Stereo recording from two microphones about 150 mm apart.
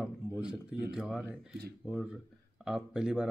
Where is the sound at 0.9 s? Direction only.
Centre (ahead or behind).